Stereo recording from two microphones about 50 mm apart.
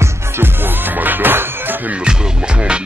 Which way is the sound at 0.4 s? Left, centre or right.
Right.